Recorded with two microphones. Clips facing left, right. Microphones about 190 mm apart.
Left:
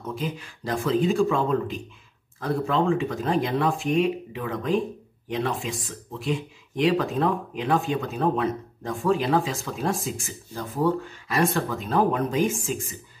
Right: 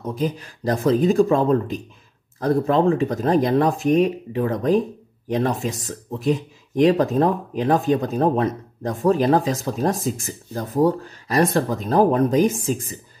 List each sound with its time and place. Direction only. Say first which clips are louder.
0.0 s speech: right 6 dB; 40° right (ahead or behind)